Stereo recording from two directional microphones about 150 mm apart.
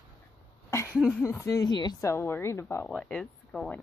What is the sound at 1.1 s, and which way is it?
A woman's voice, 15° left (ahead or behind).